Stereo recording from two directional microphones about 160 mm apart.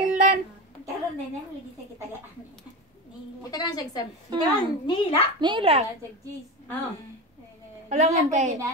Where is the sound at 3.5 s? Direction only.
25° left (ahead or behind).